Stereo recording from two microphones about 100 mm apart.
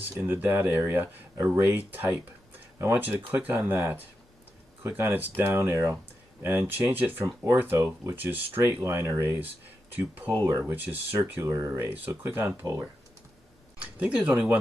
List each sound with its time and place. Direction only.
0.1 s speech: 20° right (ahead or behind)
9.9 s speech: 20° right (ahead or behind)
10.3 s speech: 35° right (ahead or behind)
10.6 s speech: 20° right (ahead or behind)
11.3 s speech: 35° right (ahead or behind)
11.8 s speech: 20° right (ahead or behind)
13.9 s speech: 10° right (ahead or behind)